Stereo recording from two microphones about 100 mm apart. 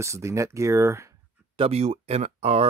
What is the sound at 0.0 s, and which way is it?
Speech, 30° right (ahead or behind).